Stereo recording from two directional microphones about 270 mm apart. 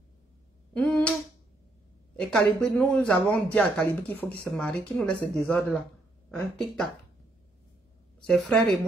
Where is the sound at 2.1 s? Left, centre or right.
Centre.